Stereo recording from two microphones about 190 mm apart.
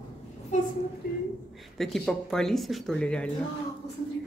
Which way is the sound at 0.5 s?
40° left (ahead or behind).